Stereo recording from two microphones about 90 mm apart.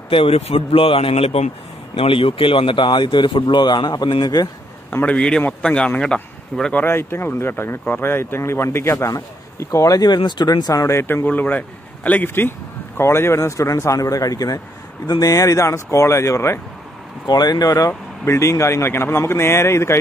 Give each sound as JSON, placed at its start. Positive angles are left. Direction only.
{"t": 0.1, "sound": "speech", "side_deg": 85}
{"t": 5.0, "sound": "speech", "side_deg": 15}
{"t": 6.8, "sound": "speech", "side_deg": 25}
{"t": 11.2, "sound": "speech", "side_deg": 20}
{"t": 17.3, "sound": "speech", "side_deg": 45}